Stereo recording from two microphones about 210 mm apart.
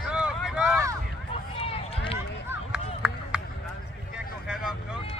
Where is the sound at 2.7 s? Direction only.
5° right (ahead or behind).